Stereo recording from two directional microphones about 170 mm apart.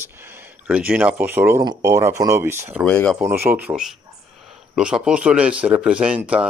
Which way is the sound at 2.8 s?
5° left (ahead or behind).